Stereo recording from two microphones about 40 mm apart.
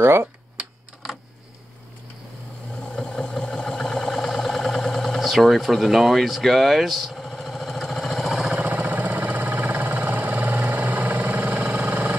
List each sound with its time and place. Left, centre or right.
0.0 s speech: right
2.8 s a sound: centre
7.2 s vehicle: centre
8.5 s vehicle: right
11.4 s engine: right